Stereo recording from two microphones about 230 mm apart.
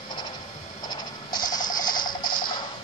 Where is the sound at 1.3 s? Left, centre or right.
Centre.